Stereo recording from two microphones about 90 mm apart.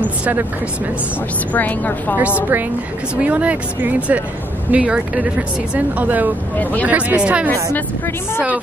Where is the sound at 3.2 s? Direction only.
15° right (ahead or behind).